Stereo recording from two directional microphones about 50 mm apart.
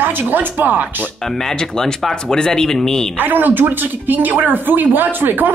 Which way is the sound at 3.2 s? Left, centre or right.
Right.